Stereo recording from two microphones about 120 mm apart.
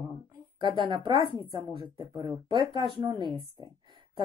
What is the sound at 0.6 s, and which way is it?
Speech, 40° right (ahead or behind).